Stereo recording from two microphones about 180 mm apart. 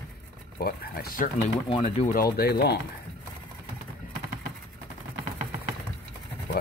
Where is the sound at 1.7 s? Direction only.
30° left (ahead or behind).